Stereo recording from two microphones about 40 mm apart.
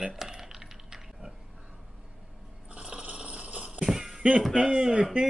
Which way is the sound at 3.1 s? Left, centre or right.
Right.